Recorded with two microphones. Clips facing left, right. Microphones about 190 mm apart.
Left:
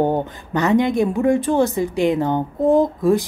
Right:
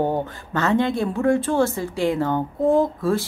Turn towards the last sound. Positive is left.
turn(degrees=15)  # may be behind; listen again after turning